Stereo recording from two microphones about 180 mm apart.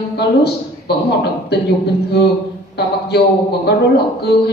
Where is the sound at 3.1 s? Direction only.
65° left (ahead or behind).